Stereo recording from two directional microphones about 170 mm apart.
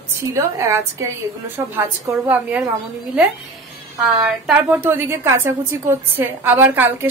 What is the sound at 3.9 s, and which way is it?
Speech, centre (ahead or behind).